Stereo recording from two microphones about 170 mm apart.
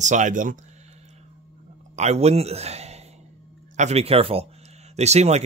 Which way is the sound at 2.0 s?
40° right (ahead or behind).